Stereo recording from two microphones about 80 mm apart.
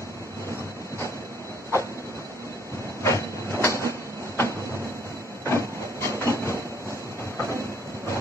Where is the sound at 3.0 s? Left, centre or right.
Left.